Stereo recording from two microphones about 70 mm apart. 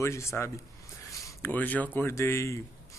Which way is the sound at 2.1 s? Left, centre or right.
Left.